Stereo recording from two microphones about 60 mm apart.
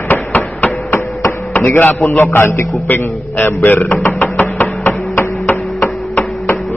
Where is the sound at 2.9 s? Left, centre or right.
Left.